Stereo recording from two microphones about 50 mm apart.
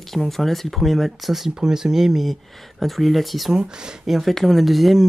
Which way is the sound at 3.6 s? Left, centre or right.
Centre.